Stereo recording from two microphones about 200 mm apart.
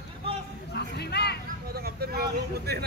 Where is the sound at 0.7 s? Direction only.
55° left (ahead or behind).